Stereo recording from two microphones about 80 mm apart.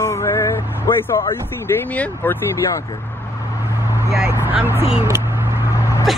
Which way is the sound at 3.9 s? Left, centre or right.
Right.